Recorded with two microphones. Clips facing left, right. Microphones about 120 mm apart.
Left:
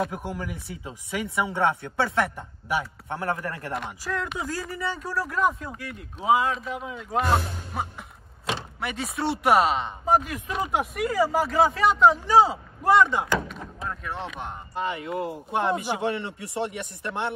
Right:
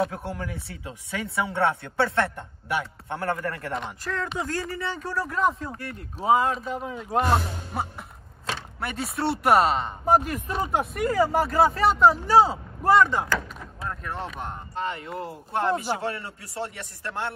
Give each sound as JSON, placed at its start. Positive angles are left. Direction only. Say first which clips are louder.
{"t": 0.1, "sound": "speech", "louder": "even", "side_deg": 15}
{"t": 3.2, "sound": "speech", "louder": "right 1 dB", "side_deg": 20}
{"t": 3.7, "sound": "speech", "louder": "even", "side_deg": 5}
{"t": 7.7, "sound": "cough", "louder": "right 1 dB", "side_deg": 0}
{"t": 8.8, "sound": "speech", "louder": "right 1 dB", "side_deg": 0}
{"t": 13.0, "sound": "speech", "louder": "even", "side_deg": 15}
{"t": 13.5, "sound": "speech", "louder": "left 1 dB", "side_deg": 0}
{"t": 16.0, "sound": "speech", "louder": "left 4 dB", "side_deg": 25}